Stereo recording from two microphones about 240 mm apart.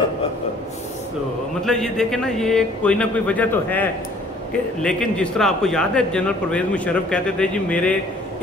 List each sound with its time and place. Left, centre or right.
1.6 s a man's voice: centre